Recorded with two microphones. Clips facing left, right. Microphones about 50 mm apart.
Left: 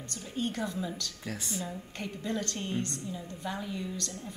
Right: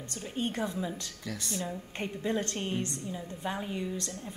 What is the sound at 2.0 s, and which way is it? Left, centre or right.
A woman's voice, right.